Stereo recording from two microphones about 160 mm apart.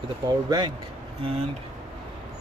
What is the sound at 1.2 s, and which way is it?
Speech, 40° right (ahead or behind).